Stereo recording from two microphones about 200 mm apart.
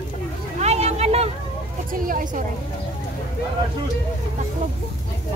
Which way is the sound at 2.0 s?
40° right (ahead or behind).